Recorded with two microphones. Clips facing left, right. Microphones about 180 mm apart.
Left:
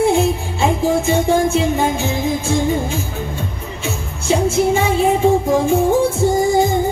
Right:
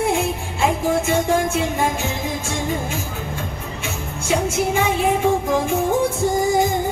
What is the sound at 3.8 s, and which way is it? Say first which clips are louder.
Music: left 6 dB; 25° left (ahead or behind).